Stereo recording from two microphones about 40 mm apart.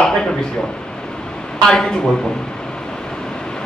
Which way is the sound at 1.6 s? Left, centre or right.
Centre.